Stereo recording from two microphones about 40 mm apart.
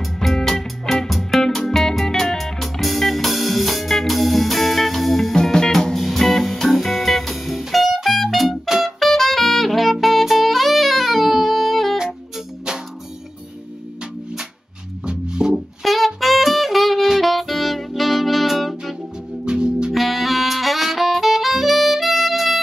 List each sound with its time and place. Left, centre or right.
0.0 s music: centre
5.3 s music: centre
8.8 s saxophone: centre
15.0 s music: centre
15.8 s saxophone: centre
19.4 s music: right
19.9 s saxophone: centre